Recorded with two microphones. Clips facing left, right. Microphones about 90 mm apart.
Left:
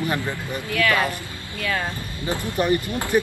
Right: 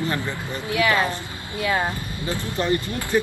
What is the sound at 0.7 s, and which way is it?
A woman's voice, 20° right (ahead or behind).